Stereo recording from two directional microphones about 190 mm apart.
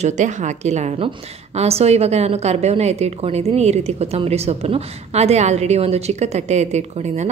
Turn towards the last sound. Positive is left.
turn(degrees=-35)  # may be behind; listen again after turning